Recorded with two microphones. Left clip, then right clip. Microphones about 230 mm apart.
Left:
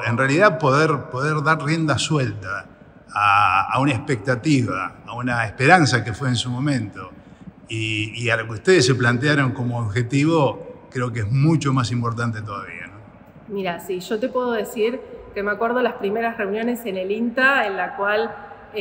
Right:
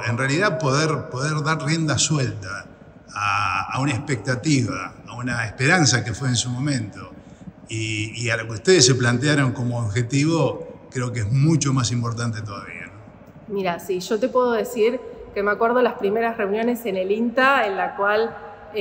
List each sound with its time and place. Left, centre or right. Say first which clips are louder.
0.0 s a man's voice: left 5 dB; centre
13.6 s a woman's voice: right 2 dB; centre